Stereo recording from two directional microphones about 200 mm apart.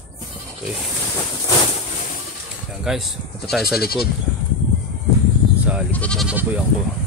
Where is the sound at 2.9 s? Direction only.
Centre (ahead or behind).